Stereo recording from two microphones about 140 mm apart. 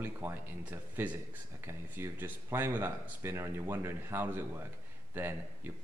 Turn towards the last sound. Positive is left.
turn(degrees=-15)  # may be behind; listen again after turning